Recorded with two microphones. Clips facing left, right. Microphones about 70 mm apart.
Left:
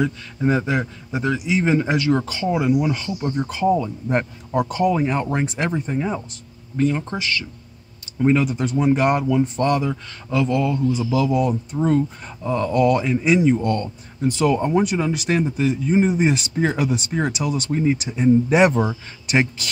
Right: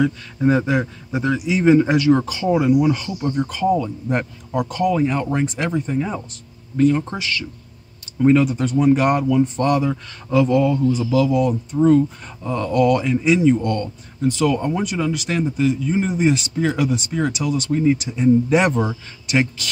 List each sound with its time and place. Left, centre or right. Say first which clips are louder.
0.0 s speech: right 3 dB; centre
1.6 s speech: right 7 dB; centre
2.1 s speech: right 3 dB; centre
2.6 s speech: right 3 dB; centre
8.9 s speech: right 1 dB; centre
9.7 s speech: right 2 dB; centre
11.1 s speech: right 2 dB; left
11.8 s speech: right 5 dB; centre
12.8 s speech: right 2 dB; centre